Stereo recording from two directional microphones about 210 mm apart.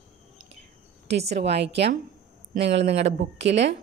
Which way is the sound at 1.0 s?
55° right (ahead or behind).